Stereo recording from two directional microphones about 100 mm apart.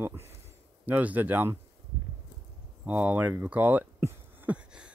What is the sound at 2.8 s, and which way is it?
Speech, 15° right (ahead or behind).